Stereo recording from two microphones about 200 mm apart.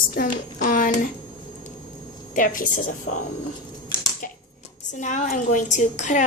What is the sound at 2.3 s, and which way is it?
Speech, 40° left (ahead or behind).